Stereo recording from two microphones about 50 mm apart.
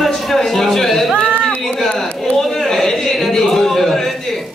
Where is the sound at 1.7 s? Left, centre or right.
Centre.